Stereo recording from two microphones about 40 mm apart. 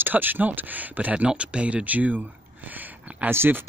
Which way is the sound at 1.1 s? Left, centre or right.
Right.